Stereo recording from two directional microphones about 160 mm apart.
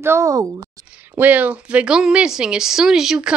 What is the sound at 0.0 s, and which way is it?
Speech, 15° right (ahead or behind).